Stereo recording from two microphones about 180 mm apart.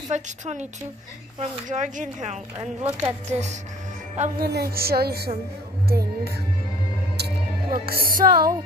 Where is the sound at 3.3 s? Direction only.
40° right (ahead or behind).